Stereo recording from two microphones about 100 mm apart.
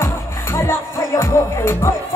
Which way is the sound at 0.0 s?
25° left (ahead or behind).